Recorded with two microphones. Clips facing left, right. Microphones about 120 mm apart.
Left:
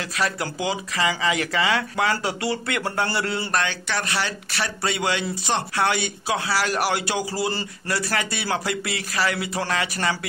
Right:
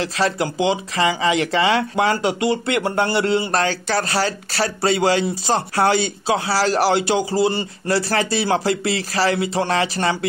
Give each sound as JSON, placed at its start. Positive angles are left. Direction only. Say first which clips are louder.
{"t": 0.0, "sound": "speech", "louder": "right 6 dB", "side_deg": -25}
{"t": 3.6, "sound": "speech", "louder": "right 6 dB", "side_deg": -40}